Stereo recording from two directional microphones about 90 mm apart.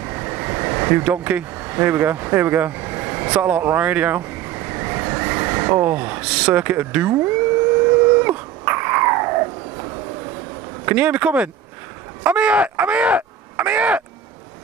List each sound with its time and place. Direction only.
0.0 s vehicle: 25° right (ahead or behind)
10.9 s speech: 15° right (ahead or behind)